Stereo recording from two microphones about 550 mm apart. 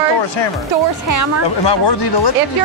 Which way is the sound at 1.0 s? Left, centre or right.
Right.